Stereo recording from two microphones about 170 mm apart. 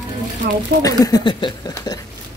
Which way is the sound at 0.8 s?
20° left (ahead or behind).